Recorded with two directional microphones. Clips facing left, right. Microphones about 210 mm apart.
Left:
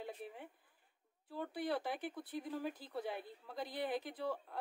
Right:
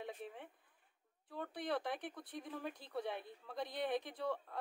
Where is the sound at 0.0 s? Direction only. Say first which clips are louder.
Even; 5° left (ahead or behind).